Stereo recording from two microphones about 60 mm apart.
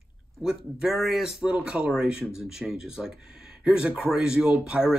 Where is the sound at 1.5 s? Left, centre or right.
Centre.